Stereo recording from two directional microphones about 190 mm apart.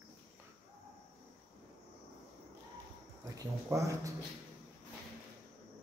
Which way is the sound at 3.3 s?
15° right (ahead or behind).